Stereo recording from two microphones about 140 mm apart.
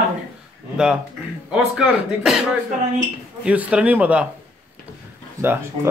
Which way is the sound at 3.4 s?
10° right (ahead or behind).